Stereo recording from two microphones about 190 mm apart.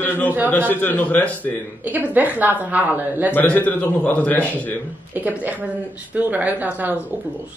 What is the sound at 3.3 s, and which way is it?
A man's voice, 10° left (ahead or behind).